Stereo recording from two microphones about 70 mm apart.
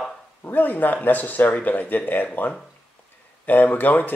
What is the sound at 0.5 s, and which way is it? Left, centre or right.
Speech, left.